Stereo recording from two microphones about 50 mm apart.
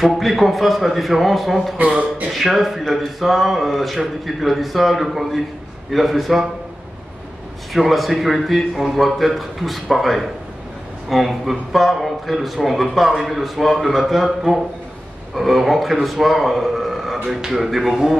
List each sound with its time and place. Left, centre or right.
0.0 s speech: centre
1.8 s speech: right
2.3 s speech: centre
7.7 s a man's voice: centre